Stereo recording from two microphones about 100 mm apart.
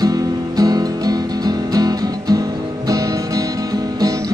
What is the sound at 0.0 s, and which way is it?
Music, 40° right (ahead or behind).